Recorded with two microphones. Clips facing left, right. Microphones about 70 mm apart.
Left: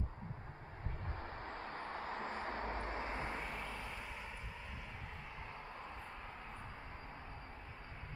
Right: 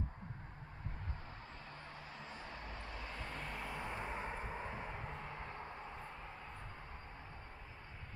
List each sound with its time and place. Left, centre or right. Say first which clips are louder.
1.2 s vehicle: left 6 dB; left
3.3 s vehicle: left 1 dB; centre
3.8 s vehicle: right 5 dB; right